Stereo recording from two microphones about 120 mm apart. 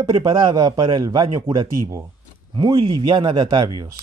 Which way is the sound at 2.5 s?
40° right (ahead or behind).